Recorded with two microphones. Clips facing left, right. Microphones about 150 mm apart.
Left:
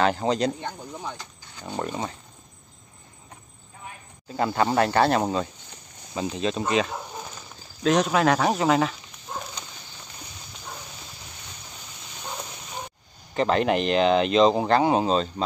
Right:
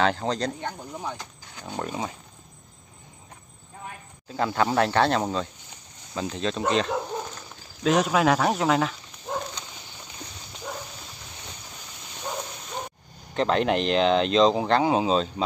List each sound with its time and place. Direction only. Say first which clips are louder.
0.0 s speech: left 2 dB; 5° left (ahead or behind)
0.6 s speech: right 1 dB; 5° right (ahead or behind)
4.3 s speech: left 1 dB; centre (ahead or behind)
6.9 s dog: right 6 dB; 80° right
7.8 s speech: even; 5° right (ahead or behind)
13.3 s speech: left 1 dB; centre (ahead or behind)